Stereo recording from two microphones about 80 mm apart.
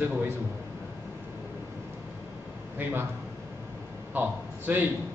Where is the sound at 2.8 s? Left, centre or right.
Right.